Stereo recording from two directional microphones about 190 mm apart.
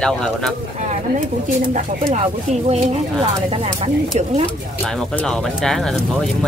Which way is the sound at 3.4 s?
30° right (ahead or behind).